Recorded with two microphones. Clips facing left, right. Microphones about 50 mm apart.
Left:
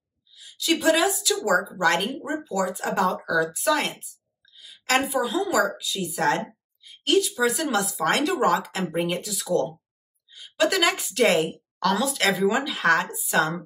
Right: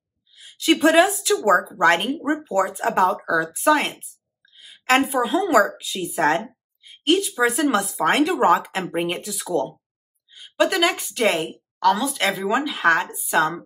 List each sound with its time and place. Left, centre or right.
0.3 s a woman's voice: right
2.2 s speech: right
3.3 s speech: right
4.5 s a woman's voice: right
6.8 s a sound: centre
7.4 s speech: right; by 13.6 s centre